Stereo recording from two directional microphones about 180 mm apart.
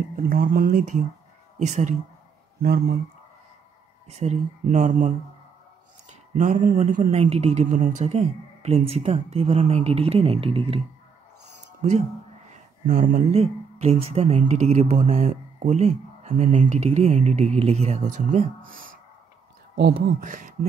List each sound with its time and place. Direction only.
0.1 s speech: 55° right (ahead or behind)
2.6 s speech: 60° right (ahead or behind)
4.1 s speech: 40° right (ahead or behind)
12.4 s a sound: 50° right (ahead or behind)
13.3 s speech: 35° right (ahead or behind)
20.2 s speech: 50° right (ahead or behind)